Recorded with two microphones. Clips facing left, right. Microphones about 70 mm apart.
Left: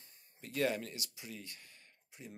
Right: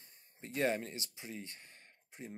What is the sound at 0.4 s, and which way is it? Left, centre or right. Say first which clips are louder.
Speech: right 1 dB; right.